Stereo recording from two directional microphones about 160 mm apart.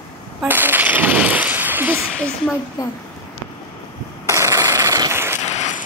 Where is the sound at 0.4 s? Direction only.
10° right (ahead or behind).